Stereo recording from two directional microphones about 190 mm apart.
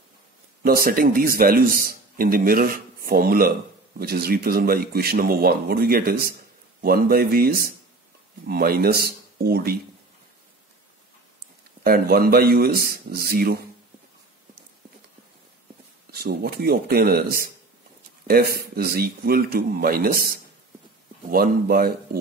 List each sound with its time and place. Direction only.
0.7 s a man's voice: 50° right (ahead or behind)
11.8 s a man's voice: 50° right (ahead or behind)
16.2 s a man's voice: 55° right (ahead or behind)